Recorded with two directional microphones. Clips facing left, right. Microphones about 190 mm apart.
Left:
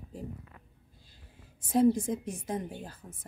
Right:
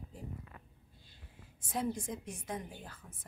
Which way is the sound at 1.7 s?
40° left (ahead or behind).